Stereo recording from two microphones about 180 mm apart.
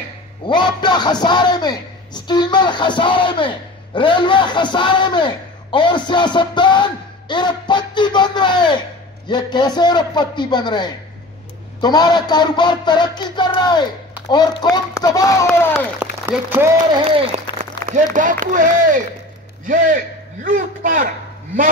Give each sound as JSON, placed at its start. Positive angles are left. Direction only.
{"t": 0.5, "sound": "a sound", "side_deg": 25}
{"t": 16.0, "sound": "speech", "side_deg": -10}
{"t": 16.9, "sound": "speech", "side_deg": -30}
{"t": 17.8, "sound": "a man's voice", "side_deg": -45}